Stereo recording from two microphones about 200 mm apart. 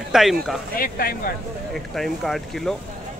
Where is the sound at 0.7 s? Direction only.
45° left (ahead or behind).